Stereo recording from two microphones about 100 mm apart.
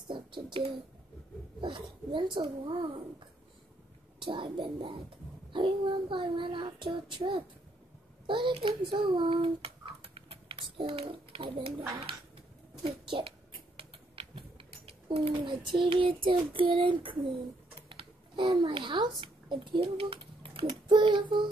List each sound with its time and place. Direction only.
0.1 s child singing: 55° right (ahead or behind)
4.2 s child singing: 55° right (ahead or behind)
8.3 s a child's voice: 55° right (ahead or behind)
12.8 s child singing: 60° right (ahead or behind)
13.7 s rodents: 65° right (ahead or behind)
14.9 s child singing: 70° right (ahead or behind)
17.8 s a child's voice: 60° right (ahead or behind)
20.9 s child singing: 50° right (ahead or behind)